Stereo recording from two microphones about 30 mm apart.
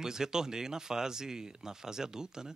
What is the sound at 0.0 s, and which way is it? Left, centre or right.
Speech, centre.